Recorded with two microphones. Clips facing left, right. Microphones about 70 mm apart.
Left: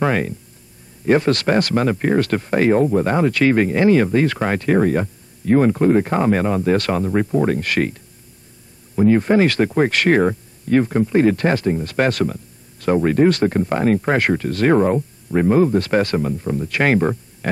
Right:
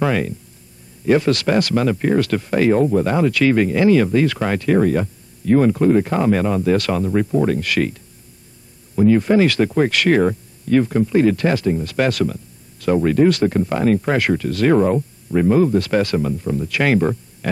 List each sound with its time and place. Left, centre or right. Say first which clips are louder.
0.0 s speech: even; left
7.4 s speech: even; left
8.9 s speech: even; left